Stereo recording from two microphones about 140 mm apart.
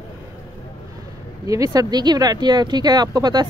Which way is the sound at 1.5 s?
25° right (ahead or behind).